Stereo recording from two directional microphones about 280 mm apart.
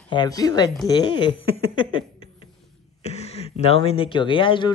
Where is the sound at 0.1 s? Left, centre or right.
Centre.